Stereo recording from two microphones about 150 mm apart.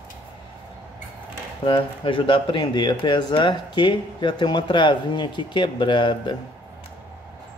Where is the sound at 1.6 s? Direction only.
35° left (ahead or behind).